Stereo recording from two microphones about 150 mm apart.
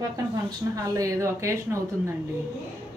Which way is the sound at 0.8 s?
20° right (ahead or behind).